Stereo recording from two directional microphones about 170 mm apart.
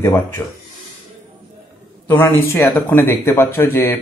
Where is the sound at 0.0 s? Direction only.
15° left (ahead or behind).